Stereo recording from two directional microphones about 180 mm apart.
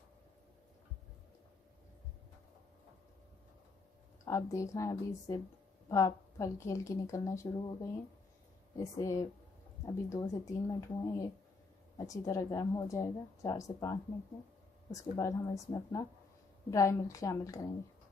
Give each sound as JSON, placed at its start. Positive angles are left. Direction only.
{"t": 4.3, "sound": "speech", "side_deg": 15}